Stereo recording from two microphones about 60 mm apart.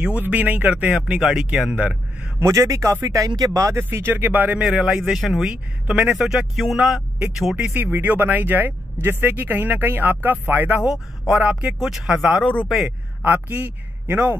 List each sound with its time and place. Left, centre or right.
0.2 s speech: right; by 1.8 s centre
1.8 s a man's voice: right
2.4 s speech: right
3.7 s speech: right
4.6 s speech: centre
5.5 s speech: centre
7.7 s a man's voice: right